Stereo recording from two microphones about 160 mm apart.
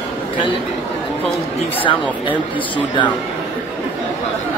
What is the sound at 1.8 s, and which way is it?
Speech, 30° left (ahead or behind).